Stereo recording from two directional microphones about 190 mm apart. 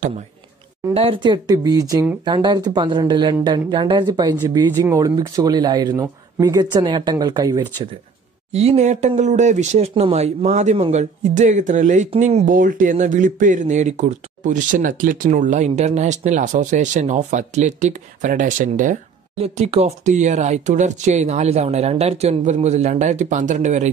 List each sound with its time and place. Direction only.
0.9 s a woman's voice: 30° right (ahead or behind)
8.5 s speech: 35° right (ahead or behind)
19.3 s speech: 35° right (ahead or behind)